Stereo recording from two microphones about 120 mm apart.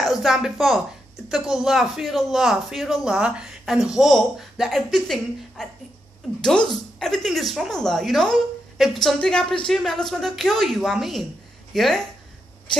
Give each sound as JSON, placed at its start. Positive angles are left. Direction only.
{"t": 0.0, "sound": "speech", "side_deg": 0}